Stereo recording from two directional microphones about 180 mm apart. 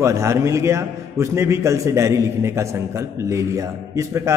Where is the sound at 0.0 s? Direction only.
15° right (ahead or behind).